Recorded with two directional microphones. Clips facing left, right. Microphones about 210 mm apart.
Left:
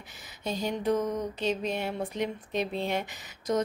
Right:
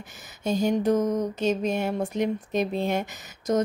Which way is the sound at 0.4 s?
45° right (ahead or behind).